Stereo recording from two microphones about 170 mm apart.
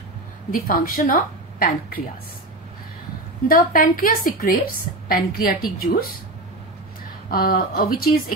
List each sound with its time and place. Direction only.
0.5 s a woman's voice: 55° left (ahead or behind)
3.4 s a woman's voice: 55° left (ahead or behind)
7.2 s a woman's voice: 60° left (ahead or behind)